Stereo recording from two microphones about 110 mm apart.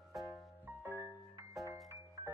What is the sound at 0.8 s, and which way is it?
Music, 20° right (ahead or behind).